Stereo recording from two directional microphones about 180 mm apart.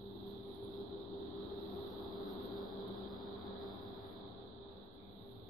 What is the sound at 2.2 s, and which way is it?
Vehicle, centre (ahead or behind).